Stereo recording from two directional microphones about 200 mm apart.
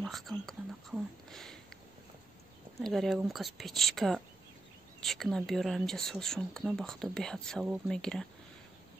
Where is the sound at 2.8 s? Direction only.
Centre (ahead or behind).